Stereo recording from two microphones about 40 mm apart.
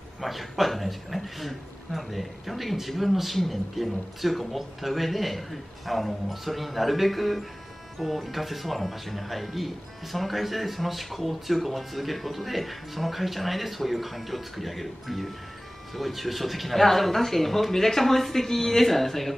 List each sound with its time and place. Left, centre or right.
0.2 s speech: centre